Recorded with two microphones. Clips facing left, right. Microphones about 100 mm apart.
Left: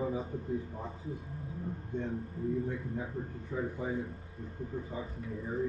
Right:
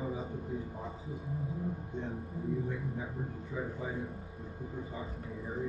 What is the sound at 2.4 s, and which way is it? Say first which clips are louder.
Speech: left 2 dB; 15° right (ahead or behind).